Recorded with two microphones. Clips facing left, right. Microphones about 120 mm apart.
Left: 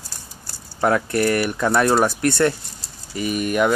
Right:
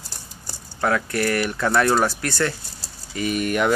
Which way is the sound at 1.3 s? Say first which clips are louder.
Left 2 dB; 15° left (ahead or behind).